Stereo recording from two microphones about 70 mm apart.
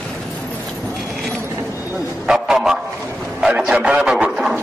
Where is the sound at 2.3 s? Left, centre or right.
Centre.